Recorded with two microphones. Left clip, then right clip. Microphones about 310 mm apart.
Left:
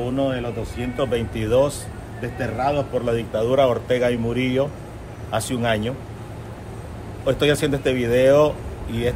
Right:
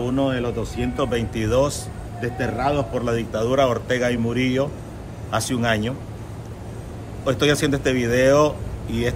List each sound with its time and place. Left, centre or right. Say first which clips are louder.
0.0 s a man's voice: right 1 dB; centre
7.2 s a man's voice: even; centre